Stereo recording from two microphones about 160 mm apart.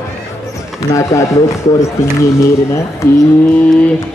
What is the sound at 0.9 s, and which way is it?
Speech, 20° left (ahead or behind).